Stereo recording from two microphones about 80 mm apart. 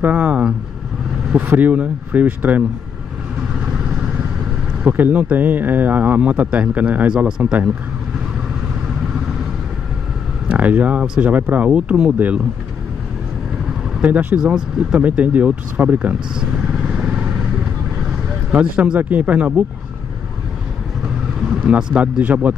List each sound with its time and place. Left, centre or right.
0.0 s speech: right
1.6 s speech: centre
3.6 s vehicle: centre
4.8 s speech: right
7.1 s speech: centre
10.5 s speech: centre
14.0 s speech: centre
18.5 s speech: centre
21.5 s speech: centre